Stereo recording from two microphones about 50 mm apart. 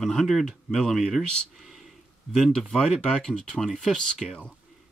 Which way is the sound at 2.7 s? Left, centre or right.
Centre.